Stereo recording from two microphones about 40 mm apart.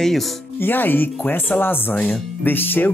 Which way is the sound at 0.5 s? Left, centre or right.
Left.